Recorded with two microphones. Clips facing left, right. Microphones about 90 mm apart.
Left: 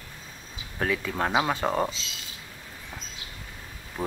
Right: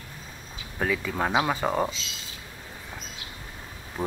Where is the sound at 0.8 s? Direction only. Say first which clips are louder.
Even; centre (ahead or behind).